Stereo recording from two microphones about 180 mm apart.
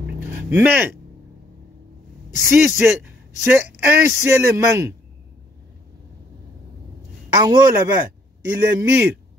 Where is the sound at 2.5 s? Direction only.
10° right (ahead or behind).